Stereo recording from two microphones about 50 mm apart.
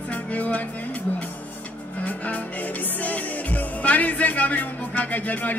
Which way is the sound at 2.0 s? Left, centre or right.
Left.